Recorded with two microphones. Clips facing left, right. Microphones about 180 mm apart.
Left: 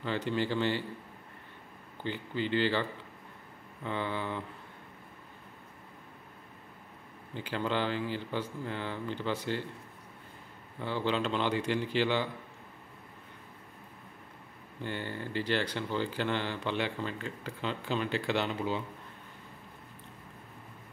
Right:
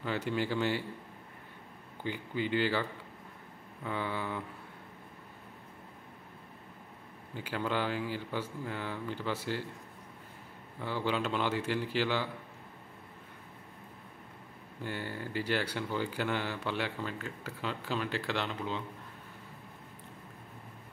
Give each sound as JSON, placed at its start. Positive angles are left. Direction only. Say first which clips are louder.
{"t": 0.0, "sound": "speech", "louder": "left 1 dB", "side_deg": -10}
{"t": 2.0, "sound": "speech", "louder": "left 1 dB", "side_deg": -10}
{"t": 7.3, "sound": "speech", "louder": "left 1 dB", "side_deg": -5}
{"t": 10.8, "sound": "speech", "louder": "left 2 dB", "side_deg": -10}
{"t": 14.8, "sound": "speech", "louder": "left 1 dB", "side_deg": -5}